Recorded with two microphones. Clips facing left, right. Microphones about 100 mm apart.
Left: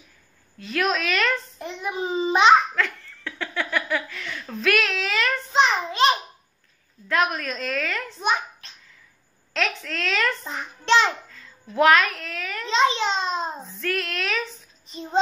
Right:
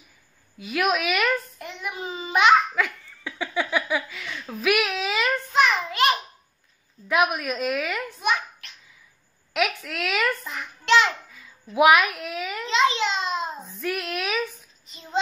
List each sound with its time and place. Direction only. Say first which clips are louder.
0.6 s a woman's voice: right 1 dB; 10° right (ahead or behind)
1.6 s a child's voice: left 4 dB; 25° left (ahead or behind)
2.7 s speech: even; 10° right (ahead or behind)
5.5 s a child's voice: left 2 dB; 25° left (ahead or behind)
7.1 s a woman's voice: right 1 dB; 15° right (ahead or behind)
8.2 s a sound: left 2 dB; 30° left (ahead or behind)
9.5 s a woman's voice: right 2 dB; 10° right (ahead or behind)
10.4 s a child's voice: left 2 dB; 30° left (ahead or behind)
11.2 s a woman's voice: left 1 dB; 10° right (ahead or behind)
12.6 s a child's voice: left 1 dB; 30° left (ahead or behind)
13.7 s a woman's voice: left 1 dB; 15° right (ahead or behind)
14.9 s speech: left 10 dB; 30° left (ahead or behind)